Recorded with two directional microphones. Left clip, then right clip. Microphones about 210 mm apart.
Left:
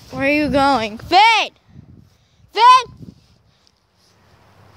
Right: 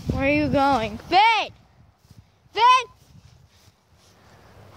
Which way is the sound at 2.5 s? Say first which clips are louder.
Left 7 dB; 35° left (ahead or behind).